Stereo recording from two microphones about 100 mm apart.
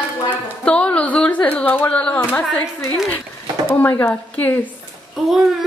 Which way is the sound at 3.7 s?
25° left (ahead or behind).